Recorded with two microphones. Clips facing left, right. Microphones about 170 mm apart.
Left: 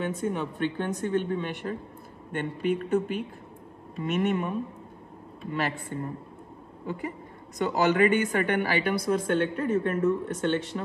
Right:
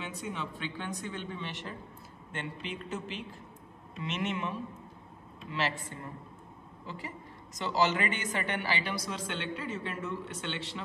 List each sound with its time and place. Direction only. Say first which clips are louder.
0.0 s speech: left 9 dB; 50° left (ahead or behind)
5.5 s speech: left 4 dB; 50° left (ahead or behind)
7.5 s speech: left 6 dB; 55° left (ahead or behind)